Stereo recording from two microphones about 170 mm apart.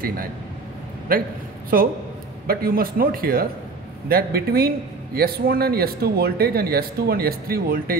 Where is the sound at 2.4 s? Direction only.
60° right (ahead or behind).